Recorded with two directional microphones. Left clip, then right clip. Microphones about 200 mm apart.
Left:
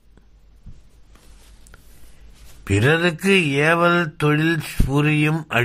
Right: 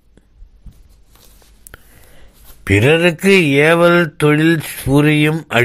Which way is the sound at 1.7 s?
25° right (ahead or behind).